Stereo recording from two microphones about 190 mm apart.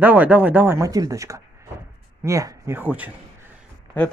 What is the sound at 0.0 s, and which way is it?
Speech, 10° right (ahead or behind).